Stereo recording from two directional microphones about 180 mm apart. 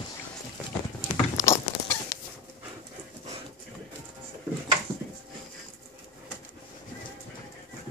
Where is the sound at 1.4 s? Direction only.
15° left (ahead or behind).